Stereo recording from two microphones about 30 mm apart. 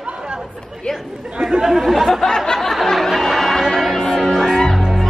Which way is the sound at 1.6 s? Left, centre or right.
Centre.